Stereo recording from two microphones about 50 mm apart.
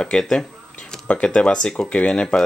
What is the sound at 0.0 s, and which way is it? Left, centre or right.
Speech, centre.